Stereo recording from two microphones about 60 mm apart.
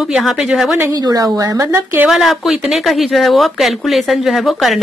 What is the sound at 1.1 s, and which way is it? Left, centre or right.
Speech, right.